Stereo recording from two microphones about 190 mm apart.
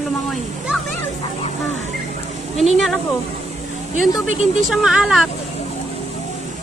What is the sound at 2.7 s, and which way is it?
Speech, centre (ahead or behind).